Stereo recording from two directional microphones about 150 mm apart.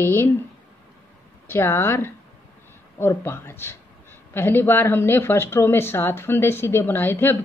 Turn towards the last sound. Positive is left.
turn(degrees=15)  # may be behind; listen again after turning